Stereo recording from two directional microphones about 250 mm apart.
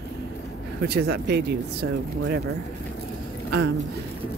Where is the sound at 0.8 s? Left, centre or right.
Right.